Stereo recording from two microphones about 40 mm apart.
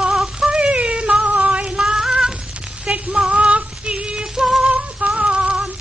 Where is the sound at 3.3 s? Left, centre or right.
Right.